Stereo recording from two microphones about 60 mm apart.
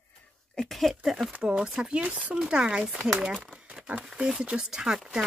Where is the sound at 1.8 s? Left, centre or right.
Right.